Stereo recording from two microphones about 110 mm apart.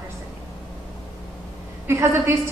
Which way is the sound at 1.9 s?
25° right (ahead or behind).